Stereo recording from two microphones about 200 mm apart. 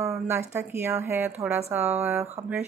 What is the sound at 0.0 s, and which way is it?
Speech, 15° right (ahead or behind).